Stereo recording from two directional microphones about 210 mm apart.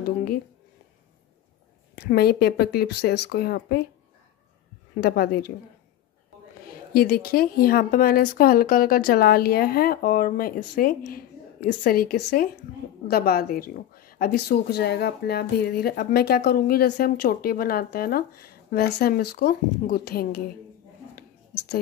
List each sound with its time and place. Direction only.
0.0 s speech: 45° left (ahead or behind)
2.0 s speech: 45° left (ahead or behind)
5.0 s speech: 50° left (ahead or behind)
6.7 s speech: 45° left (ahead or behind)
21.1 s a sound: 50° left (ahead or behind)